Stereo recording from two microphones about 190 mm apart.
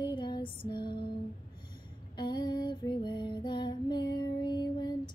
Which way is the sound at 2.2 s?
25° left (ahead or behind).